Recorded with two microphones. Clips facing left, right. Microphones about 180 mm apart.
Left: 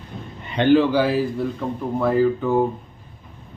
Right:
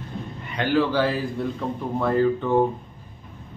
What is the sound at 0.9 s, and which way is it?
A man's voice, 5° left (ahead or behind).